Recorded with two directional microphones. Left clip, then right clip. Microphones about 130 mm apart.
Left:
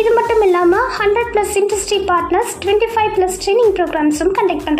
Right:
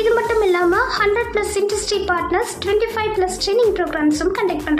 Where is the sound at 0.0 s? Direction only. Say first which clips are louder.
Left 4 dB; 30° left (ahead or behind).